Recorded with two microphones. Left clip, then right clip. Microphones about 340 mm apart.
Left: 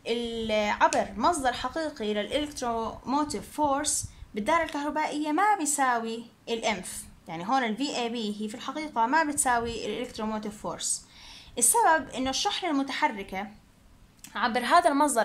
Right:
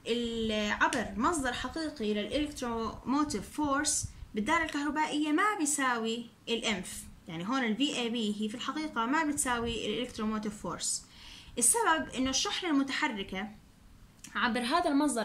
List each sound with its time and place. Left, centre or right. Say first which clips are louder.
0.0 s a woman's voice: left 2 dB; centre